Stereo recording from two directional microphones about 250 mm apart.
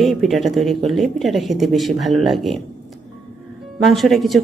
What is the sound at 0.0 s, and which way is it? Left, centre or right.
A woman's voice, centre.